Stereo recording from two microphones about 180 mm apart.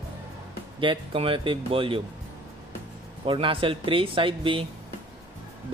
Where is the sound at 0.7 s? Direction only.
30° right (ahead or behind).